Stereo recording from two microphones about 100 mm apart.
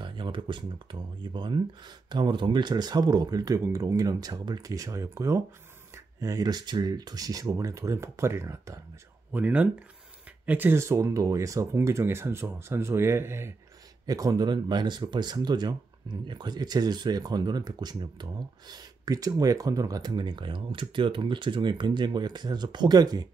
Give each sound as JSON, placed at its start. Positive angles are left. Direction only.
{"t": 0.0, "sound": "a sound", "side_deg": -55}
{"t": 1.2, "sound": "speech", "side_deg": -50}
{"t": 9.3, "sound": "speech", "side_deg": -15}
{"t": 14.0, "sound": "speech", "side_deg": -35}